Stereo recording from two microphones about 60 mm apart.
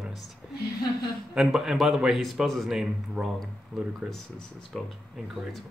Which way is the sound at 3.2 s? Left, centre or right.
Centre.